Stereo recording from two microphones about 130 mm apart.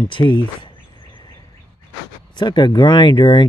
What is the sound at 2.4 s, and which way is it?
Speech, 35° left (ahead or behind).